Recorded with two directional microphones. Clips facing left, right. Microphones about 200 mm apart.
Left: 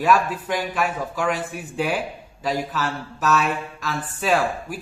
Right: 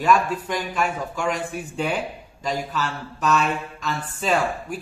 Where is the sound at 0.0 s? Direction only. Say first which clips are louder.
Even; 5° left (ahead or behind).